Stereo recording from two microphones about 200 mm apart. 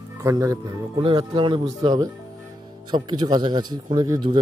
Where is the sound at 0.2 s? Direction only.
15° right (ahead or behind).